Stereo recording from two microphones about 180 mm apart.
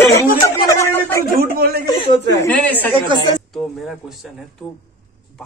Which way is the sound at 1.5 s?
55° right (ahead or behind).